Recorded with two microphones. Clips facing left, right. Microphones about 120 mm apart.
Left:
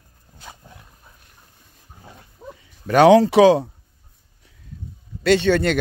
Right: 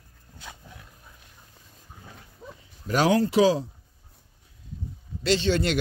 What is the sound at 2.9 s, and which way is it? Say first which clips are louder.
Speech: left 10 dB; 80° left.